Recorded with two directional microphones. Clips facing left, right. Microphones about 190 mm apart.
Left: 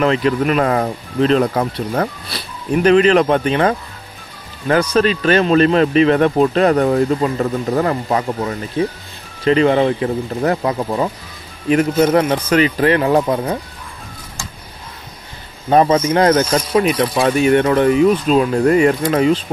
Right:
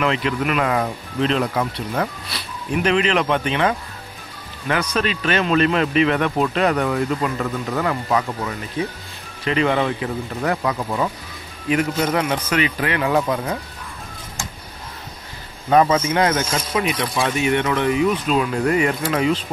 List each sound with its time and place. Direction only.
0.0 s speech: 40° left (ahead or behind)
11.7 s speech: 40° left (ahead or behind)
15.7 s speech: 30° left (ahead or behind)